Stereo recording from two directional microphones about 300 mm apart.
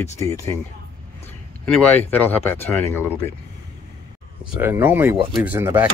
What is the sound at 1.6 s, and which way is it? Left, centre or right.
Speech, centre.